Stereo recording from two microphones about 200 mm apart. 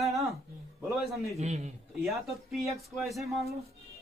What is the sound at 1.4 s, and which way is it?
Speech, 35° right (ahead or behind).